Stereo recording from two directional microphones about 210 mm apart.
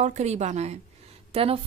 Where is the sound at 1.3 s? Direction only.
30° right (ahead or behind).